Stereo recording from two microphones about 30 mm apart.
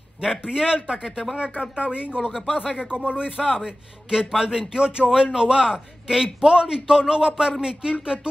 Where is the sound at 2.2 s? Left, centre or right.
Centre.